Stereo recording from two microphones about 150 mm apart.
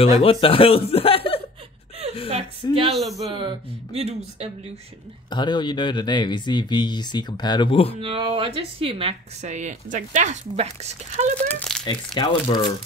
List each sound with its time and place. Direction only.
0.0 s speech: 40° left (ahead or behind)
2.2 s a sound: 40° right (ahead or behind)
2.9 s speech: centre (ahead or behind)
3.3 s speech: 35° right (ahead or behind)
5.3 s speech: 30° left (ahead or behind)
8.0 s speech: 35° right (ahead or behind)
11.3 s speech: 5° left (ahead or behind)
11.8 s speech: 30° left (ahead or behind)